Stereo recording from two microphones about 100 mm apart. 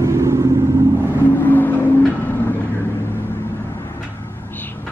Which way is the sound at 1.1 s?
20° left (ahead or behind).